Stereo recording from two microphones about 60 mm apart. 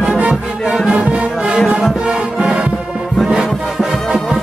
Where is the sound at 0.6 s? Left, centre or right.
Centre.